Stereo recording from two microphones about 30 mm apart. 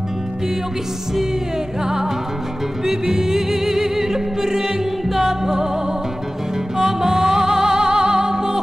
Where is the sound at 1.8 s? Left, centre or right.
Centre.